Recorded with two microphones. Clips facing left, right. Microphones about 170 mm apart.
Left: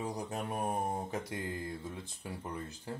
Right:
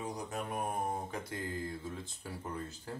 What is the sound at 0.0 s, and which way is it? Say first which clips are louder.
Mantra: left 2 dB; 30° left (ahead or behind).